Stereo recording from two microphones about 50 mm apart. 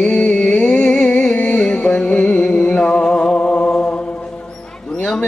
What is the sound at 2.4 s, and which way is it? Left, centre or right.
Mantra, centre.